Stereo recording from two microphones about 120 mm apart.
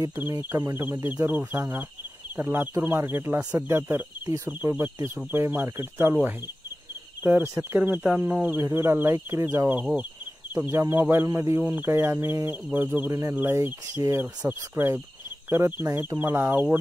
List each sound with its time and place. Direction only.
0.0 s speech: 20° right (ahead or behind)
7.2 s speech: 20° right (ahead or behind)